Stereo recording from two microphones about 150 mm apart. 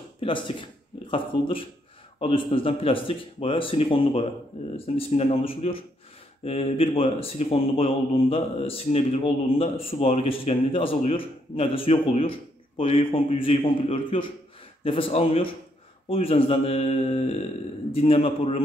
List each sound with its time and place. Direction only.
0.2 s speech: 35° left (ahead or behind)